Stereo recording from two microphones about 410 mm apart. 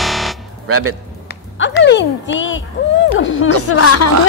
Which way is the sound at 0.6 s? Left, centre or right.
Right.